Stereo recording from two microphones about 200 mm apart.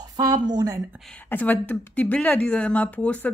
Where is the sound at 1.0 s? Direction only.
5° left (ahead or behind).